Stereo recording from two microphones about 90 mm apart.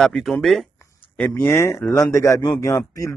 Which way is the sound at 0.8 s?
25° left (ahead or behind).